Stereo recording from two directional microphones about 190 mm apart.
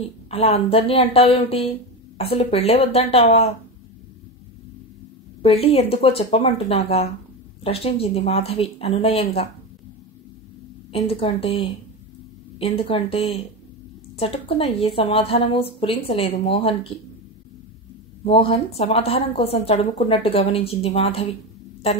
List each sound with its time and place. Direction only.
0.3 s a woman's voice: 30° left (ahead or behind)
5.4 s a woman's voice: 30° left (ahead or behind)
10.9 s a woman's voice: 30° left (ahead or behind)
18.2 s a woman's voice: 30° left (ahead or behind)